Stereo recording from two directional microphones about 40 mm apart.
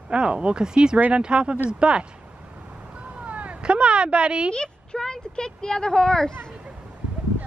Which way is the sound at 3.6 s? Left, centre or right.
Right.